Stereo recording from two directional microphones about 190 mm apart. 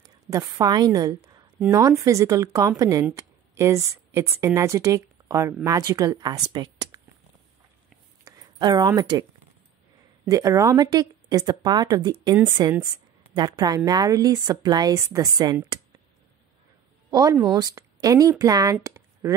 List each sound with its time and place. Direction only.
0.0 s a woman's voice: 20° right (ahead or behind)
8.2 s a sound: 15° right (ahead or behind)
10.2 s speech: 20° right (ahead or behind)
17.1 s speech: 20° right (ahead or behind)